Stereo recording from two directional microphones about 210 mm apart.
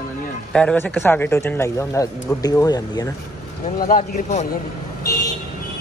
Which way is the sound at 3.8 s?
40° left (ahead or behind).